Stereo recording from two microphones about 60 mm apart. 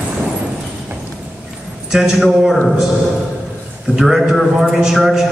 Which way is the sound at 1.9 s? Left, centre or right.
Centre.